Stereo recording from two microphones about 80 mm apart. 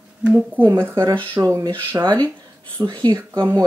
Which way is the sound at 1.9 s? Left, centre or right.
Right.